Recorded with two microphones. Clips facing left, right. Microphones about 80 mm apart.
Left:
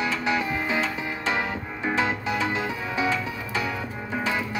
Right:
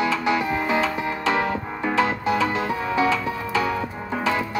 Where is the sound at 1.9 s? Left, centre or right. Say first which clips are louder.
Right 5 dB; left.